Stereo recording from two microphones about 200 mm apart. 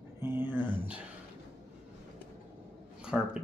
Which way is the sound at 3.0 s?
5° right (ahead or behind).